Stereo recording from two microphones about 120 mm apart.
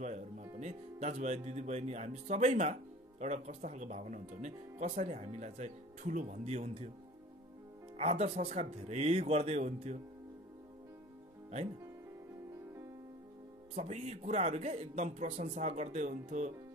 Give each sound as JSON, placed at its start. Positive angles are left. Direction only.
{"t": 0.0, "sound": "speech", "side_deg": -75}
{"t": 8.0, "sound": "speech", "side_deg": -60}
{"t": 13.7, "sound": "speech", "side_deg": -65}